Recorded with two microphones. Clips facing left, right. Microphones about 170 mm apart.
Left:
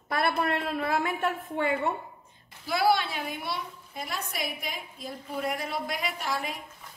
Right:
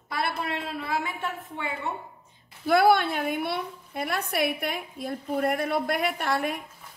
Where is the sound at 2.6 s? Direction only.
55° right (ahead or behind).